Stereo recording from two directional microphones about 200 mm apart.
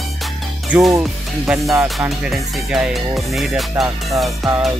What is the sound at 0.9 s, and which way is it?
Speech, 10° right (ahead or behind).